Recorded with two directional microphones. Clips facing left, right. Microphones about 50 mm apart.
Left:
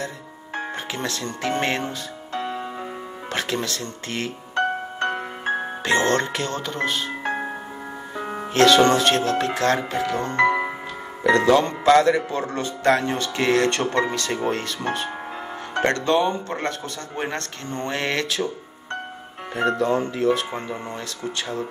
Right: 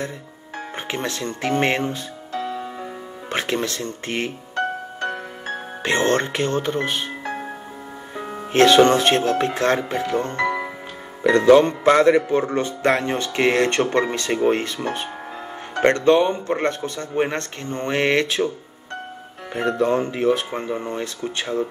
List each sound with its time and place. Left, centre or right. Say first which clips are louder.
0.7 s speech: right 2 dB; right
2.3 s music: right 1 dB; left
3.3 s speech: right 3 dB; right
4.6 s music: left 2 dB; left
5.8 s speech: right 2 dB; right
8.5 s speech: right 2 dB; right
10.2 s speech: left 3 dB; left
11.2 s speech: right 4 dB; right
19.8 s speech: right 2 dB; right